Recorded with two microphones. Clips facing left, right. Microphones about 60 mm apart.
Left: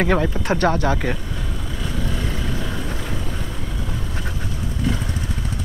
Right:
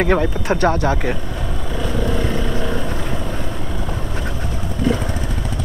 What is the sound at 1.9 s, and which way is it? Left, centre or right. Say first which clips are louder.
Vehicle: right 6 dB; right.